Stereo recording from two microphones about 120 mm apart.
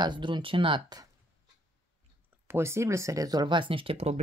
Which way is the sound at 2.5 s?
20° right (ahead or behind).